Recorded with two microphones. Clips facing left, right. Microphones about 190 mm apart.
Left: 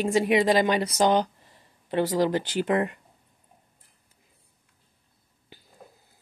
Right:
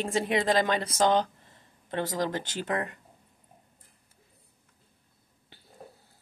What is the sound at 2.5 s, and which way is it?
Speech, 15° left (ahead or behind).